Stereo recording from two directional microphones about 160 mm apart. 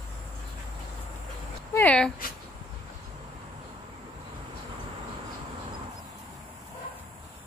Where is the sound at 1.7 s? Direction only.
10° left (ahead or behind).